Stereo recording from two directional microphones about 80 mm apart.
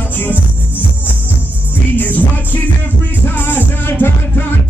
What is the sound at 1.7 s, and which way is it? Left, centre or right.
Music, left.